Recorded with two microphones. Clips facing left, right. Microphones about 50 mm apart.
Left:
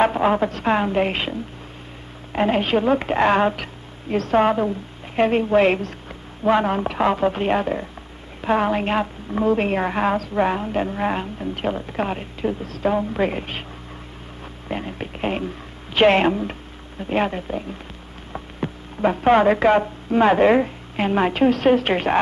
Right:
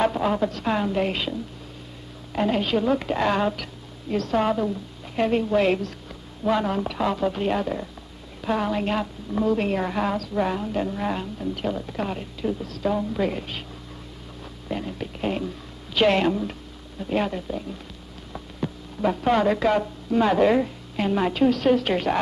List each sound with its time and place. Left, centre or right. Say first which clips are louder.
0.0 s a woman's voice: left 4 dB; left
2.3 s a woman's voice: left 4 dB; left
14.7 s a woman's voice: left 2 dB; left